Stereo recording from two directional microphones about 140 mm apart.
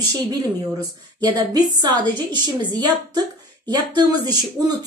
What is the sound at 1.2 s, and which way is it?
A woman's voice, 30° right (ahead or behind).